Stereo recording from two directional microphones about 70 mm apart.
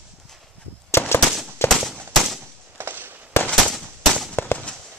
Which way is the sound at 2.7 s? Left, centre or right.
Right.